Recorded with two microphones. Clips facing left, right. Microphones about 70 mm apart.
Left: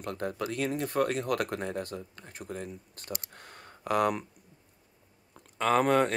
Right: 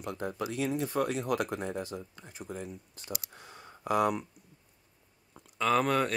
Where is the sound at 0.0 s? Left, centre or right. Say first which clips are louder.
Left 1 dB; left.